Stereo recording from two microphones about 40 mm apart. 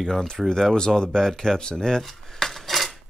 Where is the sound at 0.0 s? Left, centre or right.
Centre.